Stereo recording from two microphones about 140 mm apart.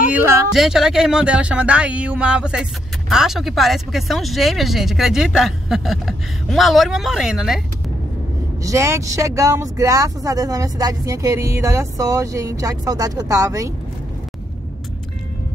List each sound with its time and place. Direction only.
0.1 s speech: 15° right (ahead or behind)
0.5 s speech: 5° right (ahead or behind)
8.6 s speech: 20° right (ahead or behind)